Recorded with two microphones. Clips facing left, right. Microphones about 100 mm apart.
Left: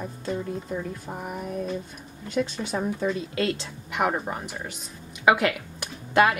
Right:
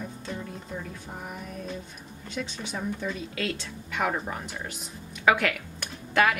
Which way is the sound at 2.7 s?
35° left (ahead or behind).